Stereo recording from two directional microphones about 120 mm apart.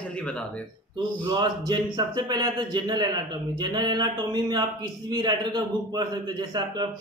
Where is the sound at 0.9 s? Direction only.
35° right (ahead or behind).